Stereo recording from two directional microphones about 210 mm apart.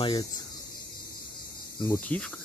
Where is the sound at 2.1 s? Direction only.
5° left (ahead or behind).